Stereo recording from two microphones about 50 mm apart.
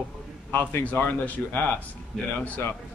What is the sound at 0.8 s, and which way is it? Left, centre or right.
Speech, left.